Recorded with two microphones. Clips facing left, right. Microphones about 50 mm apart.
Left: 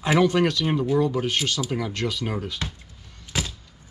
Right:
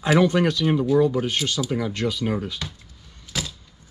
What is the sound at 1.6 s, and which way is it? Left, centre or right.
Speech, centre.